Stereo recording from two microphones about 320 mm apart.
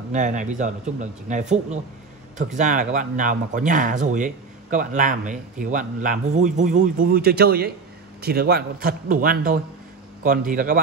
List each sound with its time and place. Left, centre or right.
0.1 s speech: right